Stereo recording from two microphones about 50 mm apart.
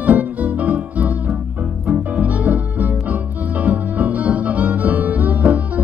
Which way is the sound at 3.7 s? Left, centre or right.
Right.